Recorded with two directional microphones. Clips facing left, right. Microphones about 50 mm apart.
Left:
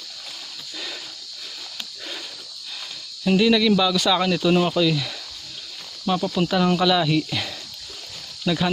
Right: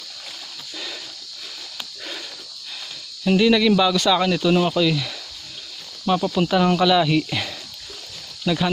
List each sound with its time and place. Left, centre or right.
3.3 s speech: centre
3.6 s speech: right
3.9 s speech: centre
6.0 s speech: right
6.8 s speech: centre
8.5 s speech: centre